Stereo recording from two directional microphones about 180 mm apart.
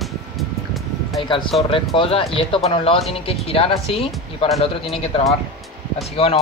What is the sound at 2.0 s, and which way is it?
Speech, 30° left (ahead or behind).